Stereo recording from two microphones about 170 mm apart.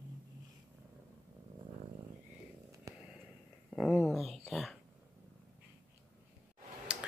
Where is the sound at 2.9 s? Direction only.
20° right (ahead or behind).